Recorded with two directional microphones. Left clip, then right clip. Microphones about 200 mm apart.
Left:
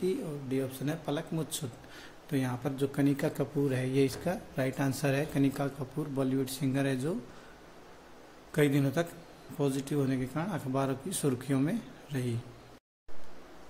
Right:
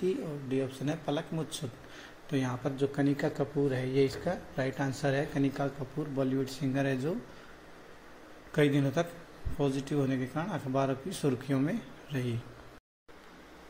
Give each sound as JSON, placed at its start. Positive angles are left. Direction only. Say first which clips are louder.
{"t": 0.0, "sound": "speech", "louder": "even", "side_deg": 15}
{"t": 8.5, "sound": "a man's voice", "louder": "even", "side_deg": 15}